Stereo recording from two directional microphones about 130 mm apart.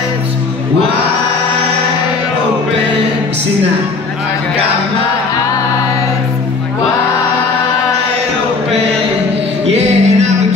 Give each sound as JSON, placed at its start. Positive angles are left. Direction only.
{"t": 9.7, "sound": "music", "side_deg": -55}